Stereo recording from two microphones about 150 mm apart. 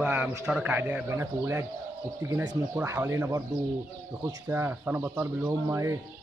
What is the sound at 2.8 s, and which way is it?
Speech, 15° right (ahead or behind).